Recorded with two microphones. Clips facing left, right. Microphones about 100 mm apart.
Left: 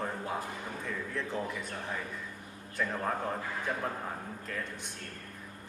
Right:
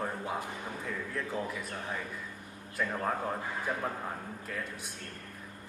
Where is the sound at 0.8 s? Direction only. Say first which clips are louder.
Left 1 dB; 5° right (ahead or behind).